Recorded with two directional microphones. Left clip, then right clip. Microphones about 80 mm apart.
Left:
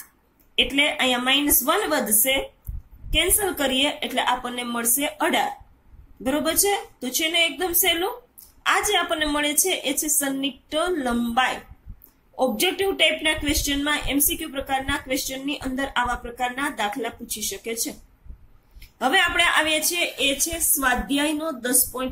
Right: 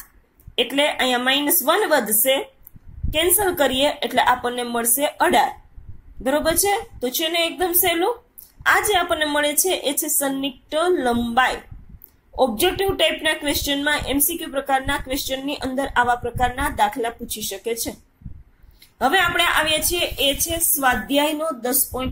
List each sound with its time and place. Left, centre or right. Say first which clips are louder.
0.6 s a woman's voice: right 1 dB; right
7.0 s a woman's voice: even; right
9.1 s a woman's voice: right 3 dB; right
9.6 s a woman's voice: right 2 dB; right
12.4 s a woman's voice: right 3 dB; right
13.5 s a woman's voice: right 2 dB; right
14.0 s a woman's voice: right 1 dB; right
14.8 s a woman's voice: right 2 dB; right
16.2 s a woman's voice: right 5 dB; right
18.9 s a woman's voice: right 2 dB; right